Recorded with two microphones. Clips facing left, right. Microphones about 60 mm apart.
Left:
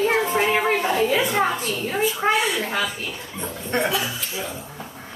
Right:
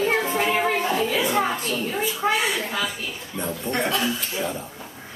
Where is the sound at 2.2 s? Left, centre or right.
Left.